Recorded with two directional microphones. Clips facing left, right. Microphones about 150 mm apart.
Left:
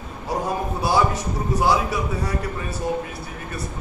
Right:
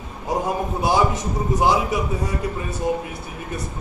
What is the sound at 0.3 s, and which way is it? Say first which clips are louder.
A man's voice: right 2 dB; 20° right (ahead or behind).